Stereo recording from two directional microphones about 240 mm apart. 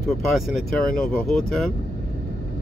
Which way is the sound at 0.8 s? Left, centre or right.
Left.